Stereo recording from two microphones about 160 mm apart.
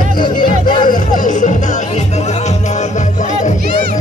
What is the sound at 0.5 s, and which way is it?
Music, 60° left (ahead or behind).